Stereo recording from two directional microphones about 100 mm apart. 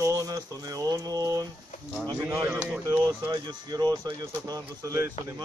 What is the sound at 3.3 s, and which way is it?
A man's voice, 45° right (ahead or behind).